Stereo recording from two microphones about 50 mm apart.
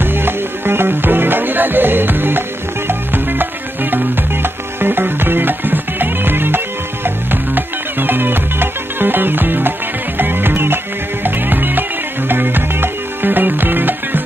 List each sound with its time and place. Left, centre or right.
0.0 s music: right